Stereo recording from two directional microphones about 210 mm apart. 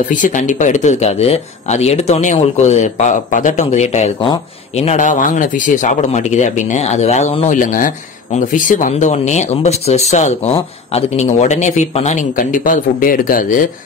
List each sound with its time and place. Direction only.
0.1 s speech: 35° left (ahead or behind)